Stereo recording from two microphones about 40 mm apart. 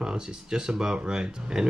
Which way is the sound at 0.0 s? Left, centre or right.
Centre.